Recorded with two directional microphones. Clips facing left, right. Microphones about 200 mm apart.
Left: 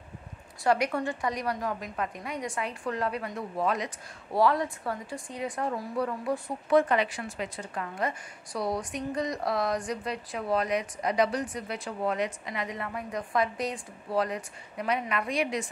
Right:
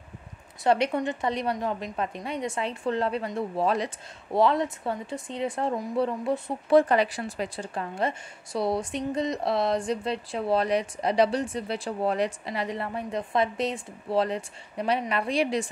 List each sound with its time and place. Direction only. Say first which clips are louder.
0.7 s a woman's voice: right 3 dB; 25° right (ahead or behind)